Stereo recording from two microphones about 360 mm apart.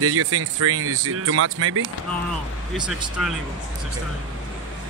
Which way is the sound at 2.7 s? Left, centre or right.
Centre.